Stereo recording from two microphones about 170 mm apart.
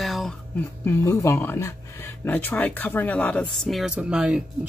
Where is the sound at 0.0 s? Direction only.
Centre (ahead or behind).